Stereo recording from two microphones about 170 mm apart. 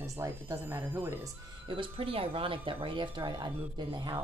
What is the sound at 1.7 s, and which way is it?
Speech, 30° right (ahead or behind).